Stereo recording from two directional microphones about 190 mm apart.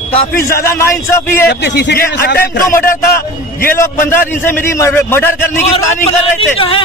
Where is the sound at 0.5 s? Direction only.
15° left (ahead or behind).